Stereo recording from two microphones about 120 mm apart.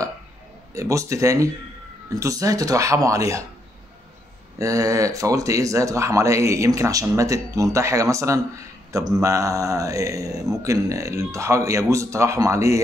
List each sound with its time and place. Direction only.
0.7 s speech: 25° right (ahead or behind)
4.6 s speech: 30° right (ahead or behind)